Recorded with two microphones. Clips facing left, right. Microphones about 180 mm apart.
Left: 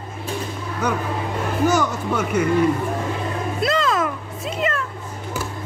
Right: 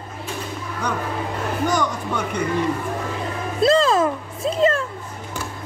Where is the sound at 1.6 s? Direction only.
5° left (ahead or behind).